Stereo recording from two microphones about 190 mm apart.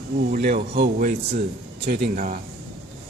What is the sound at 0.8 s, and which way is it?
Speech, 55° right (ahead or behind).